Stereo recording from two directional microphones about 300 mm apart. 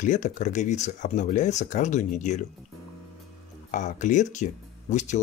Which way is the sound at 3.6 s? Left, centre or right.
Left.